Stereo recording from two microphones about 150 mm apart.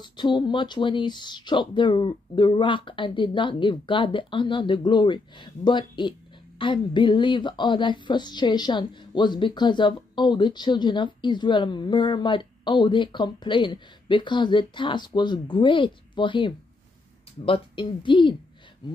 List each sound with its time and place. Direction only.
0.0 s a woman's voice: 30° left (ahead or behind)